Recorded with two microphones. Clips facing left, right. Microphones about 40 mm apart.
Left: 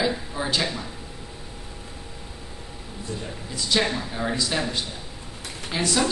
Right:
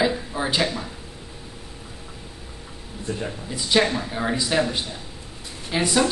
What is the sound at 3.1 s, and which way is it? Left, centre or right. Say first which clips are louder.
Speech: right 5 dB; right.